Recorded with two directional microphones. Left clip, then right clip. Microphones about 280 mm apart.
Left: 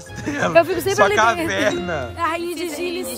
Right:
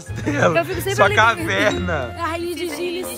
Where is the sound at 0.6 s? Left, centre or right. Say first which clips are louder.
Left 5 dB; left.